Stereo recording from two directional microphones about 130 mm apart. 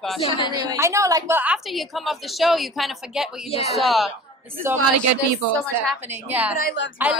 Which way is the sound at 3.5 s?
50° left (ahead or behind).